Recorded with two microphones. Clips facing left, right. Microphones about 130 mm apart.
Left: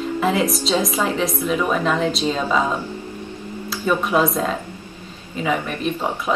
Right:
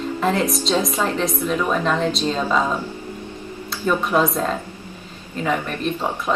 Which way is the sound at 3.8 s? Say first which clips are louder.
Even; 5° left (ahead or behind).